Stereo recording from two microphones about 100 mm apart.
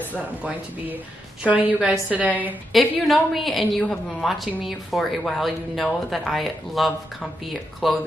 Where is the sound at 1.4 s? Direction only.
15° right (ahead or behind).